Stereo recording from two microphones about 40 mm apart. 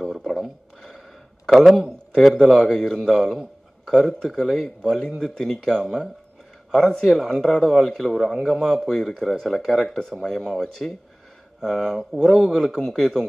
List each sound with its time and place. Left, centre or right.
0.4 s a sound: centre
2.4 s a man's voice: centre
4.6 s speech: centre